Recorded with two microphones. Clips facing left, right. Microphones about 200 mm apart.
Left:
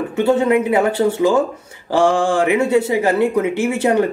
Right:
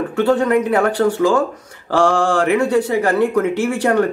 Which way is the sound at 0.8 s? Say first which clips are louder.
Even; 25° left (ahead or behind).